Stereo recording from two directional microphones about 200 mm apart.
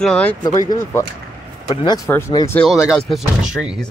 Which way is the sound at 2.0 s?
15° left (ahead or behind).